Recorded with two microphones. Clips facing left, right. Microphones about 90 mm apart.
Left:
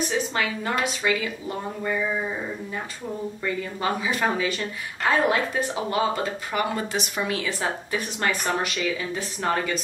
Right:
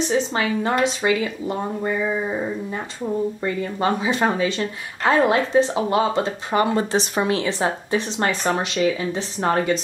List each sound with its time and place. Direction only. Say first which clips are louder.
0.0 s speech: right 4 dB; 25° right (ahead or behind)
3.4 s speech: right 1 dB; 30° right (ahead or behind)